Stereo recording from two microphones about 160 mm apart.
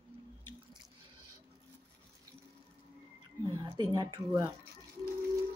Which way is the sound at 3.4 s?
30° right (ahead or behind).